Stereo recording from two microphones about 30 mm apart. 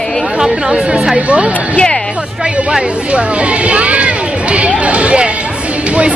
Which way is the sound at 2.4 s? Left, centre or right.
Right.